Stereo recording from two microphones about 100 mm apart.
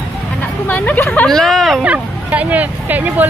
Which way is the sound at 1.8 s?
15° right (ahead or behind).